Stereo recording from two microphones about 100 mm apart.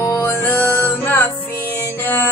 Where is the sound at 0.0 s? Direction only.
20° left (ahead or behind).